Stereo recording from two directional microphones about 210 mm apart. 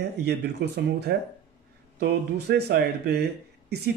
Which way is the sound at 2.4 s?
50° right (ahead or behind).